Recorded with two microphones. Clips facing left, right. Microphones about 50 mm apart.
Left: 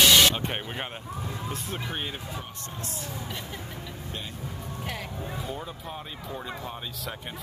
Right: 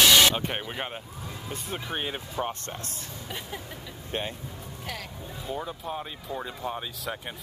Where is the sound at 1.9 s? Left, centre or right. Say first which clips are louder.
Right 4 dB; centre.